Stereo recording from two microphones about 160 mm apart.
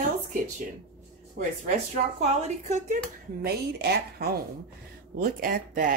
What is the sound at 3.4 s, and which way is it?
Speech, 85° right.